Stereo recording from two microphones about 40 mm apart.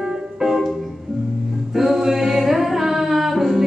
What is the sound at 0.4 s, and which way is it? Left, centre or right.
Music, centre.